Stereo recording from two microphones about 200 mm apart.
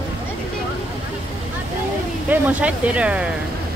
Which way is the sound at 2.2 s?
5° right (ahead or behind).